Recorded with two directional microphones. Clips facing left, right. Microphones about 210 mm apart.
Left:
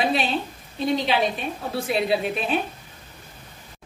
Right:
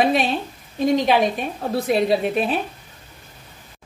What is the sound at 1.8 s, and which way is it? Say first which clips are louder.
Speech: right 4 dB; 45° right (ahead or behind).